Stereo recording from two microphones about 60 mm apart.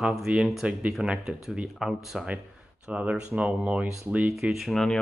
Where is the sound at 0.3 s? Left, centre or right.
Centre.